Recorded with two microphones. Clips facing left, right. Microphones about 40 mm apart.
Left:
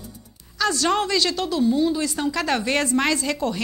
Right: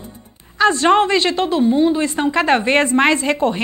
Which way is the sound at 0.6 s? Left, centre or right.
Right.